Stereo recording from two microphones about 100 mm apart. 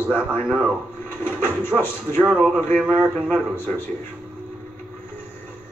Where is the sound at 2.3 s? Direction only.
5° right (ahead or behind).